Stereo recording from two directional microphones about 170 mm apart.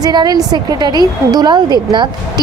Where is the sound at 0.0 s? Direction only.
25° right (ahead or behind).